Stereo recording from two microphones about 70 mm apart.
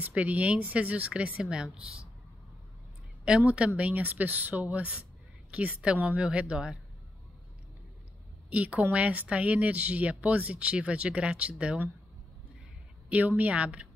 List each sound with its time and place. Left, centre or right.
0.0 s speech: right
3.4 s speech: centre
8.5 s speech: right
13.1 s speech: right